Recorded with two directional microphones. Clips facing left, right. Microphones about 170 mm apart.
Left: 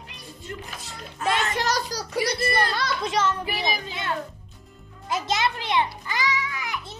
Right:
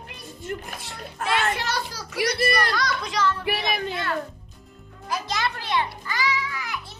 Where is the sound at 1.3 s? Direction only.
40° left (ahead or behind).